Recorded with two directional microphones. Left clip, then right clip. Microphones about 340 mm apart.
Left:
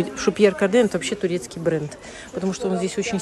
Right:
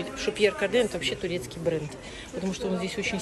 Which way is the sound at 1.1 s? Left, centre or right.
Left.